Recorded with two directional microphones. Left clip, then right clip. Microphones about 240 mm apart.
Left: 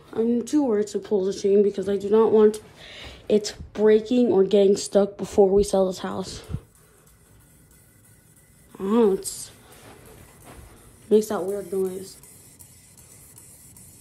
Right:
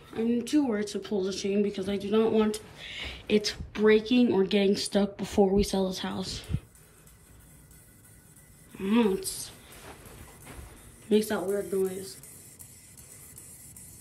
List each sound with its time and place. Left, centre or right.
0.1 s speech: centre
8.7 s speech: centre
11.1 s speech: centre